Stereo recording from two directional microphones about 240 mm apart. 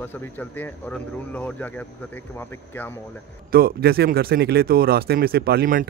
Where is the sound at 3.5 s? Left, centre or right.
Right.